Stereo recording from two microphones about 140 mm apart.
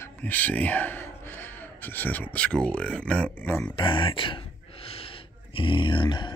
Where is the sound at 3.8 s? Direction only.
35° left (ahead or behind).